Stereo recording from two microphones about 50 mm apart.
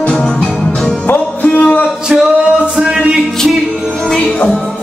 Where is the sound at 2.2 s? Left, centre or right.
Right.